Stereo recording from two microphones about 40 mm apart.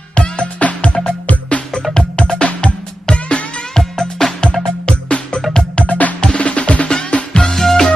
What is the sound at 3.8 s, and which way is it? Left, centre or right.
Music, centre.